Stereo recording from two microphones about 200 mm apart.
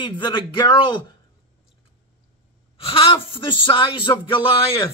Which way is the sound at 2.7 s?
25° left (ahead or behind).